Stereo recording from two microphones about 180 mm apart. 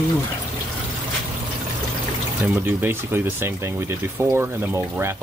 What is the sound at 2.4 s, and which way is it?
Speech, 10° right (ahead or behind).